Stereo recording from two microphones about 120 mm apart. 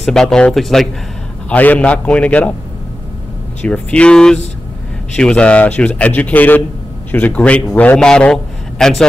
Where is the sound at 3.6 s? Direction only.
10° left (ahead or behind).